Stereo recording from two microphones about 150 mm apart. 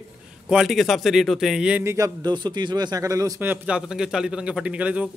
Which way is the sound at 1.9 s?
20° right (ahead or behind).